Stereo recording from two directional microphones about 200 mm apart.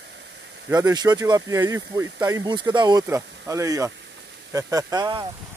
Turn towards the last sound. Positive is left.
turn(degrees=-20)  # may be behind; listen again after turning